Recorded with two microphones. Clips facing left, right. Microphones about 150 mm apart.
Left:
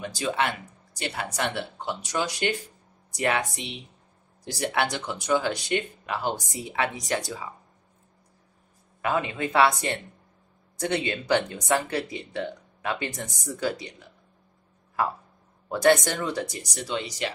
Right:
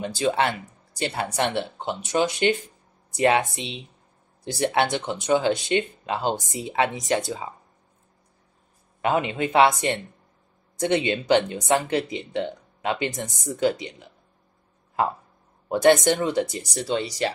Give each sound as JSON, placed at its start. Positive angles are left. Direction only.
{"t": 0.0, "sound": "speech", "side_deg": -30}
{"t": 9.0, "sound": "speech", "side_deg": -20}